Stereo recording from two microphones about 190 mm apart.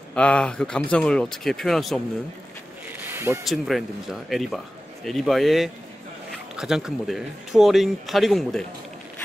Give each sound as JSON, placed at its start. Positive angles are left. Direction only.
{"t": 0.1, "sound": "speech", "side_deg": 5}
{"t": 3.0, "sound": "a sound", "side_deg": -10}
{"t": 3.4, "sound": "speech", "side_deg": 0}